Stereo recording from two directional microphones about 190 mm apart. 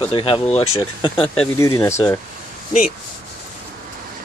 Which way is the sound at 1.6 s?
15° left (ahead or behind).